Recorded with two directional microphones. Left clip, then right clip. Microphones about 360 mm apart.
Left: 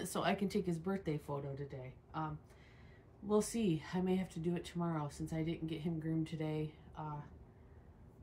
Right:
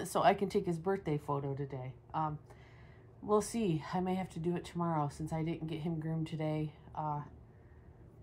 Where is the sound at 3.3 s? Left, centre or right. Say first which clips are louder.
Right 3 dB; centre.